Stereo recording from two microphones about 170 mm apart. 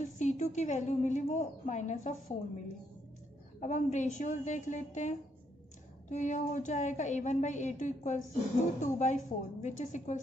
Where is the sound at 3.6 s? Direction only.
45° left (ahead or behind).